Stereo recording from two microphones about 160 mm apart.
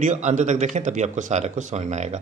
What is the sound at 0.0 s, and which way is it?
Speech, 50° right (ahead or behind).